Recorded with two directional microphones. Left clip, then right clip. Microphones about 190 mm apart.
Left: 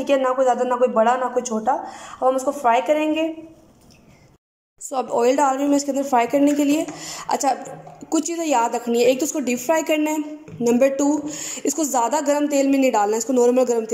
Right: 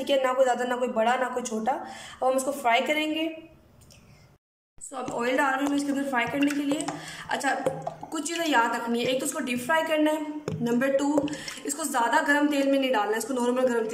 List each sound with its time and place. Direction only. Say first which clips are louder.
0.0 s speech: left 5 dB; 10° left (ahead or behind)
4.9 s speech: left 8 dB; 25° left (ahead or behind)